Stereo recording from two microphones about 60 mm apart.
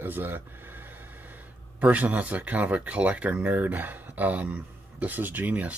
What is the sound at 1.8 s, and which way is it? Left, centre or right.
Speech, right.